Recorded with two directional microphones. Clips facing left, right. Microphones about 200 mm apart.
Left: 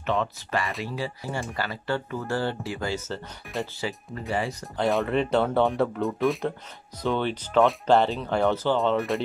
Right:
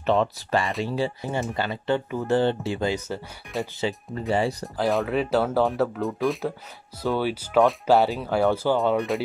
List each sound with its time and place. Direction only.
0.0 s speech: 35° right (ahead or behind)
4.7 s speech: centre (ahead or behind)